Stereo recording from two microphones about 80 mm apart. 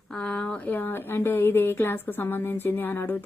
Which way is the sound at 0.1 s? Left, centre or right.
Centre.